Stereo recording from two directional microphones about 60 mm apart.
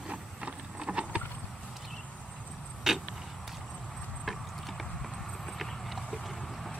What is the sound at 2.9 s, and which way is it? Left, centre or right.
Vehicle, centre.